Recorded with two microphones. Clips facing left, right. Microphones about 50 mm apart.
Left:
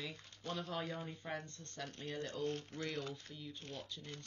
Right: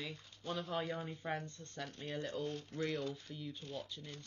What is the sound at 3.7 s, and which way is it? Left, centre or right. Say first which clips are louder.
Speech: right 3 dB; centre.